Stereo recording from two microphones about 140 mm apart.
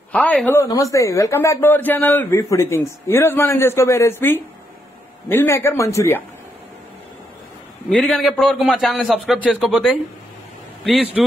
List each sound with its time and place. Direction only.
0.1 s a man's voice: 10° left (ahead or behind)
0.6 s a man's voice: 25° left (ahead or behind)
7.9 s a man's voice: centre (ahead or behind)
11.2 s a man's voice: centre (ahead or behind)